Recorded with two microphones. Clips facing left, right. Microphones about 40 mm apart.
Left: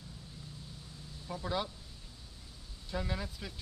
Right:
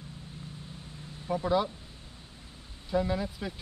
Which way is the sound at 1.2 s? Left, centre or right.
Right.